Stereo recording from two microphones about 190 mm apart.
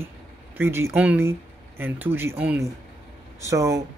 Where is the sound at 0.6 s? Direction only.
10° right (ahead or behind).